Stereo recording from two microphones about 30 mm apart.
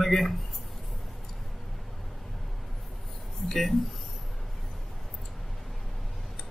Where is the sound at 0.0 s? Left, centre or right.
Centre.